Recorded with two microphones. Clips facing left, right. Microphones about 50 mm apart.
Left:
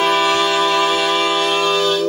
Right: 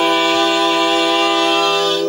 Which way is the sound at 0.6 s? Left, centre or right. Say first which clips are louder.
Right 1 dB; centre.